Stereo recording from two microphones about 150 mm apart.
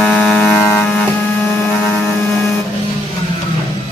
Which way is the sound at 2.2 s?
15° left (ahead or behind).